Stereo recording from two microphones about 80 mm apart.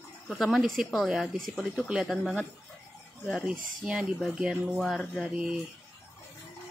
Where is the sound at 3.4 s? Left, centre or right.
Centre.